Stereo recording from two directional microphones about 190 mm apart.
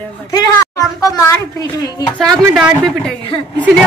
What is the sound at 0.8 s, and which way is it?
Speech, 15° left (ahead or behind).